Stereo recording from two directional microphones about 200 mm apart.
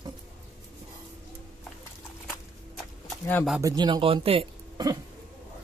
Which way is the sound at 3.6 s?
20° right (ahead or behind).